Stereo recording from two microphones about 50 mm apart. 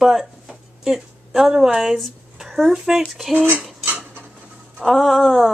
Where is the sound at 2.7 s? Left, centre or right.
Centre.